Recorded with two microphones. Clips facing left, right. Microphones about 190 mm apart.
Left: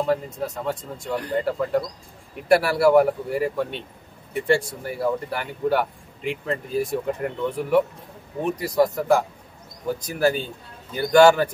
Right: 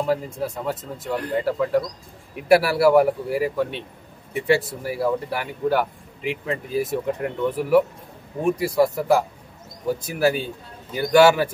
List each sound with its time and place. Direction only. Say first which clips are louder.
0.0 s speech: even; 10° right (ahead or behind)
8.4 s speech: right 2 dB; 10° right (ahead or behind)